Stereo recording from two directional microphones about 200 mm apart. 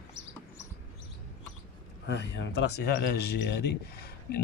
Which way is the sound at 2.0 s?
60° left (ahead or behind).